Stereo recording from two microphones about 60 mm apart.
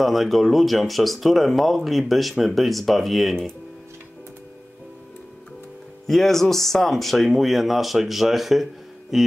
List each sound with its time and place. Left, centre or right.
0.0 s speech: centre
6.0 s speech: centre